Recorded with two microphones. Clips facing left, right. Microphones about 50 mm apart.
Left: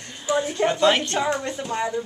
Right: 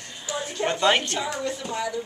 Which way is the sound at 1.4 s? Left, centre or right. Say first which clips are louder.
Left 2 dB; left.